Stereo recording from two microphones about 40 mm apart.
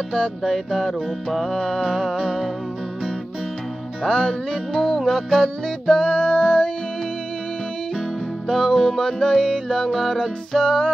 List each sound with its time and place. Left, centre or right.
0.4 s music: centre
4.0 s music: centre
5.9 s music: left
8.5 s music: centre